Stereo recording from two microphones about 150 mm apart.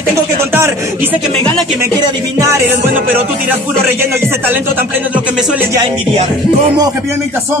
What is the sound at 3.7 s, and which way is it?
Speech, 15° right (ahead or behind).